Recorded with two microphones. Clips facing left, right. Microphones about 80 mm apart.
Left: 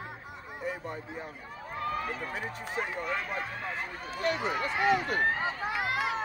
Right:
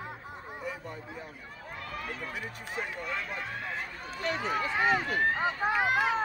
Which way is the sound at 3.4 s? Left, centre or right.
Left.